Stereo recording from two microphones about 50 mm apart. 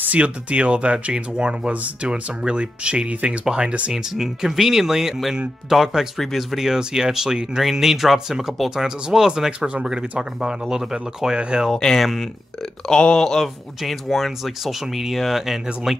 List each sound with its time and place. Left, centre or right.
0.1 s speech: right
3.9 s speech: centre
11.7 s speech: centre